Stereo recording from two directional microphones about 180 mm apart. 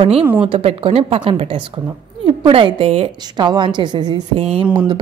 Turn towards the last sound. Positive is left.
turn(degrees=-30)  # may be behind; listen again after turning